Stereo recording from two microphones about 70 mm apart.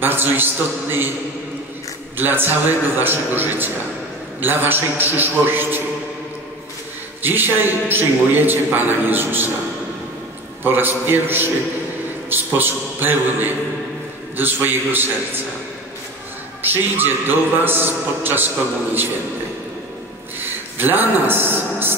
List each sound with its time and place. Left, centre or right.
0.0 s a man's voice: right
2.1 s a man's voice: right
7.2 s a man's voice: right
10.6 s a man's voice: right
16.6 s a man's voice: right
20.3 s a sound: right